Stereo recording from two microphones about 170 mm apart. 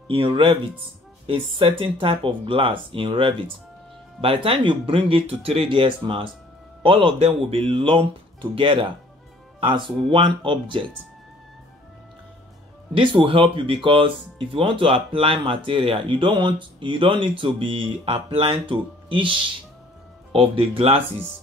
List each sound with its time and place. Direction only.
0.1 s speech: 30° right (ahead or behind)
12.9 s speech: 30° right (ahead or behind)
20.3 s speech: 35° right (ahead or behind)